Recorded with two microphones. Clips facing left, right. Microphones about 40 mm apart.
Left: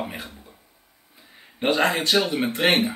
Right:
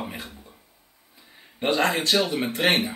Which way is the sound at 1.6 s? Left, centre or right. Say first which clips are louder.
Left 1 dB; centre.